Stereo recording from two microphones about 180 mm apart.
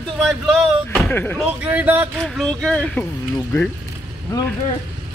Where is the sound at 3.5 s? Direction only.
20° left (ahead or behind).